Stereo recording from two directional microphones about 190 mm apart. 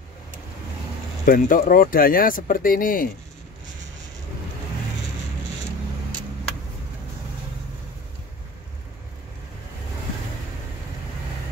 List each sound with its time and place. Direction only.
1.2 s speech: 45° left (ahead or behind)